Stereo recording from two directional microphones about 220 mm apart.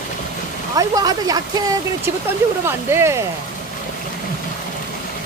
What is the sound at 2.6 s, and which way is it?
Speech, 10° right (ahead or behind).